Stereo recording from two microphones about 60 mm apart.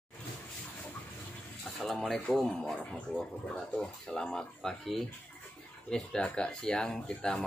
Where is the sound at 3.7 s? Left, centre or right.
Centre.